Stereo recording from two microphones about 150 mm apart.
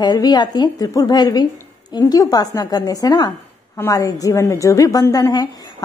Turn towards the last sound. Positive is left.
turn(degrees=25)  # may be behind; listen again after turning